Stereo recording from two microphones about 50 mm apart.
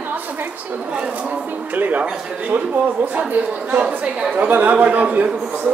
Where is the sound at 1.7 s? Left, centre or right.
Right.